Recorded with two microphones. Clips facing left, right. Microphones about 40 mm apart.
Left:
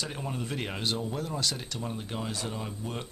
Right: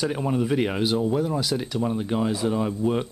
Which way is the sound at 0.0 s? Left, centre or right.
Centre.